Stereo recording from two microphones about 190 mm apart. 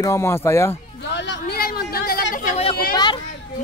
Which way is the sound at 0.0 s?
15° left (ahead or behind).